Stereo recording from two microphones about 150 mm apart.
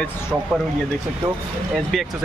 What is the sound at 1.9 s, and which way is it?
Speech, centre (ahead or behind).